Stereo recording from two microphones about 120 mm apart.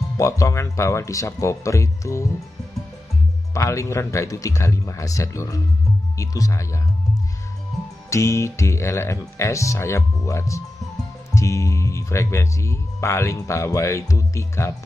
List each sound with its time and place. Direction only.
0.2 s speech: 25° left (ahead or behind)
3.5 s speech: 25° left (ahead or behind)
8.1 s speech: 25° left (ahead or behind)